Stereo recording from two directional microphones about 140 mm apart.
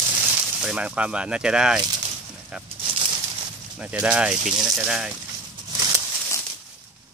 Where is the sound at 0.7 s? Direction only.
10° right (ahead or behind).